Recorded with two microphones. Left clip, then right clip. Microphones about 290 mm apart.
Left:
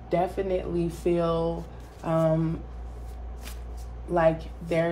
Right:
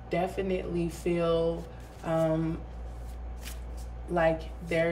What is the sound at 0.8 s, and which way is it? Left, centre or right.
Speech, centre.